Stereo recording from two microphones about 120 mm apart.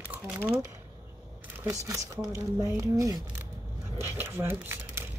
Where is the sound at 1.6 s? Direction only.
25° right (ahead or behind).